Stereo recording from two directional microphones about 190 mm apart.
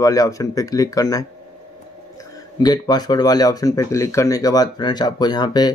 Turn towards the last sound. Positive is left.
turn(degrees=20)  # may be behind; listen again after turning